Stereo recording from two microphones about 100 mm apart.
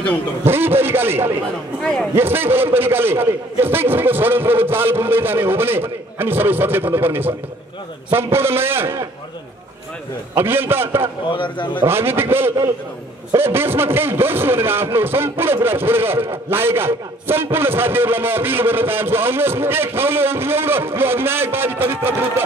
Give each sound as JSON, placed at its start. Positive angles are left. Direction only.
{"t": 0.4, "sound": "a man's voice", "side_deg": -20}
{"t": 1.8, "sound": "a man's voice", "side_deg": 5}
{"t": 2.1, "sound": "a man's voice", "side_deg": -20}
{"t": 10.3, "sound": "a man's voice", "side_deg": -20}
{"t": 11.2, "sound": "speech", "side_deg": 55}
{"t": 11.9, "sound": "a man's voice", "side_deg": -25}